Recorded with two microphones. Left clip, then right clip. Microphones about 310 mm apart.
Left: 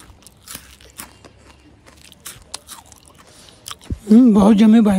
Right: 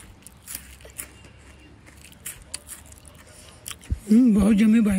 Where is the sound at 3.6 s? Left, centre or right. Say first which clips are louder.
Left 7 dB; centre.